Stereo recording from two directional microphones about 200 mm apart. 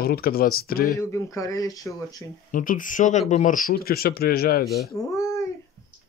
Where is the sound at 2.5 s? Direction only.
40° left (ahead or behind).